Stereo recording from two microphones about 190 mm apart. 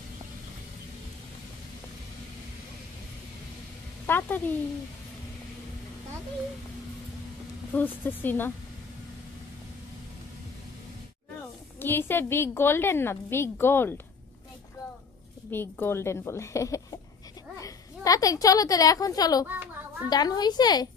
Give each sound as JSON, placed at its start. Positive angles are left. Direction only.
{"t": 4.0, "sound": "a woman's voice", "side_deg": 10}
{"t": 7.7, "sound": "a woman's voice", "side_deg": 10}
{"t": 11.8, "sound": "a woman's voice", "side_deg": 10}
{"t": 15.5, "sound": "a woman's voice", "side_deg": 10}
{"t": 19.4, "sound": "a child's voice", "side_deg": -10}
{"t": 20.1, "sound": "a woman's voice", "side_deg": 20}